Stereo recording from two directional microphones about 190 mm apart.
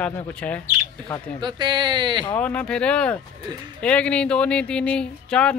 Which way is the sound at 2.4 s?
5° left (ahead or behind).